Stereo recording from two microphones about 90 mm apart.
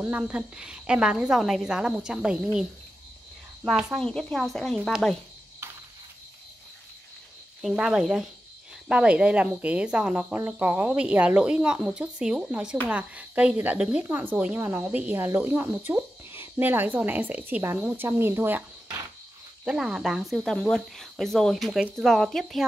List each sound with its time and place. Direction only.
0.0 s a woman's voice: 15° right (ahead or behind)
4.0 s speech: 10° left (ahead or behind)
5.6 s a sound: 30° right (ahead or behind)
7.6 s a woman's voice: 5° right (ahead or behind)
15.1 s speech: 25° right (ahead or behind)
19.6 s a woman's voice: 10° right (ahead or behind)